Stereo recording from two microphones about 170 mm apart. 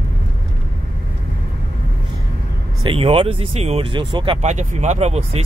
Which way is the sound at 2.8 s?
30° right (ahead or behind).